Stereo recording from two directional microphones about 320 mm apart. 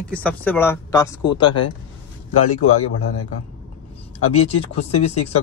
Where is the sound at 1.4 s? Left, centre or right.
Left.